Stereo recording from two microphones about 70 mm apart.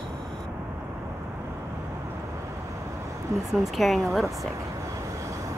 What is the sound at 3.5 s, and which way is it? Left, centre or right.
Speech, centre.